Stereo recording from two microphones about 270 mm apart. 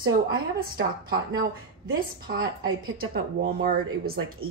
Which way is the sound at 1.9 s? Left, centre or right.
Right.